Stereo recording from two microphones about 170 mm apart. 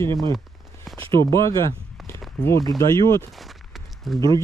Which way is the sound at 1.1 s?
25° right (ahead or behind).